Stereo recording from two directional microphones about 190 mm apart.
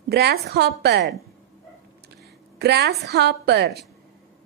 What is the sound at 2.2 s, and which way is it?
A woman's voice, 60° right (ahead or behind).